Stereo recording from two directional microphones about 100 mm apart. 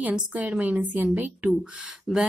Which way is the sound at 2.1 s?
5° left (ahead or behind).